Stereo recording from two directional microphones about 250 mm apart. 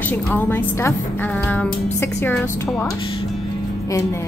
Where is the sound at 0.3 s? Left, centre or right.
Centre.